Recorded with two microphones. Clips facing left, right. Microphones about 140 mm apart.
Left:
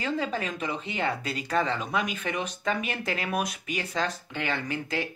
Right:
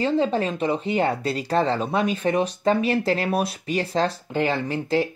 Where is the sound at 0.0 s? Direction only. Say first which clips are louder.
Right 8 dB; 30° right (ahead or behind).